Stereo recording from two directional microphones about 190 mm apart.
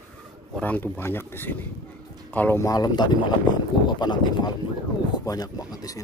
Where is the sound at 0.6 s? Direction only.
10° left (ahead or behind).